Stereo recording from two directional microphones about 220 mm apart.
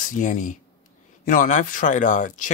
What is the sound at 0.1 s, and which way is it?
Speech, 35° left (ahead or behind).